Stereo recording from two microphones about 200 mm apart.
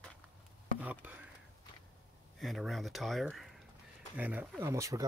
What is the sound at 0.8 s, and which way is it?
Speech, 10° right (ahead or behind).